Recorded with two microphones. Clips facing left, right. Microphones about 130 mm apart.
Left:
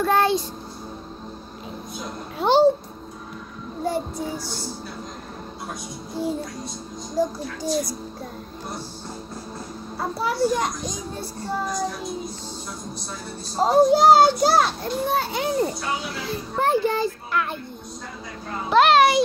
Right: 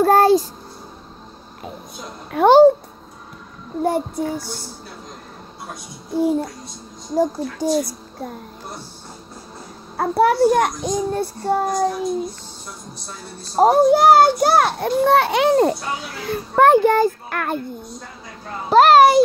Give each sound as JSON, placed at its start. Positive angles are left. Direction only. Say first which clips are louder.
{"t": 0.0, "sound": "a child's voice", "louder": "right 7 dB", "side_deg": -40}
{"t": 2.3, "sound": "a child's voice", "louder": "right 7 dB", "side_deg": -50}
{"t": 3.8, "sound": "a child's voice", "louder": "right 5 dB", "side_deg": -55}
{"t": 7.2, "sound": "a child's voice", "louder": "right 5 dB", "side_deg": -55}
{"t": 9.9, "sound": "a child's voice", "louder": "right 9 dB", "side_deg": -60}
{"t": 13.6, "sound": "a child's voice", "louder": "right 3 dB", "side_deg": -55}
{"t": 16.3, "sound": "a child's voice", "louder": "right 9 dB", "side_deg": -60}
{"t": 18.7, "sound": "a child's voice", "louder": "right 5 dB", "side_deg": -40}